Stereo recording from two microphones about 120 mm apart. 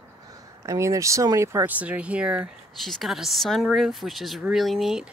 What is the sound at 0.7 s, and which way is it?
Speech, 25° right (ahead or behind).